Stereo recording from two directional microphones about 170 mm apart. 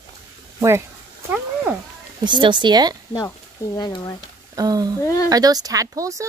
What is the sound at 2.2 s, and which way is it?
Speech, 25° right (ahead or behind).